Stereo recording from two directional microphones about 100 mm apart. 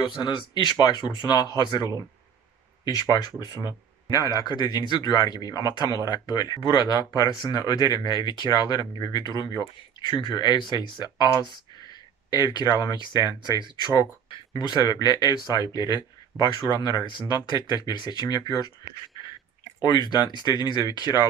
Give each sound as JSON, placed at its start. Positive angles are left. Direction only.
{"t": 0.0, "sound": "speech", "side_deg": 50}
{"t": 12.3, "sound": "speech", "side_deg": 45}
{"t": 19.8, "sound": "speech", "side_deg": 40}